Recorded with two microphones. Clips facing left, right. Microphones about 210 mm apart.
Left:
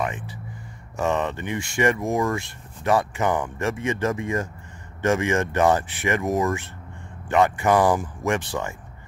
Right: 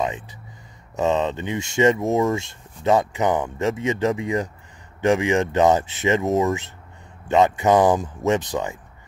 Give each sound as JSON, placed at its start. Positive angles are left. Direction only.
{"t": 0.0, "sound": "speech", "side_deg": -20}